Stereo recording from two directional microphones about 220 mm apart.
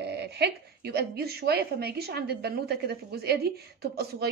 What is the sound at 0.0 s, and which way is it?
A woman's voice, 50° right (ahead or behind).